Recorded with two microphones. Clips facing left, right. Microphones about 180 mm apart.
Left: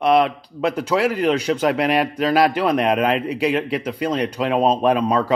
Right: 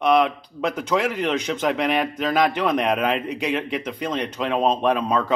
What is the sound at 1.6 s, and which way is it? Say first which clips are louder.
Speech: left 1 dB; 5° left (ahead or behind).